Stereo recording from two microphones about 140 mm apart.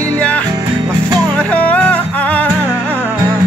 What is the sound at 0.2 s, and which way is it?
Music, 10° left (ahead or behind).